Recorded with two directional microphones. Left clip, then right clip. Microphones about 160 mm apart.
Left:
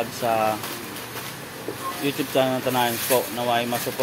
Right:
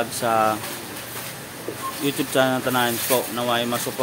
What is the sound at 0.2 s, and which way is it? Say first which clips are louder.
Speech: right 2 dB; 30° right (ahead or behind).